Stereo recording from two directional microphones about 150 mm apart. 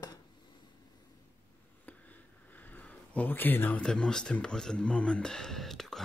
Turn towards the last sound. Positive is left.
turn(degrees=0)  # may be behind; listen again after turning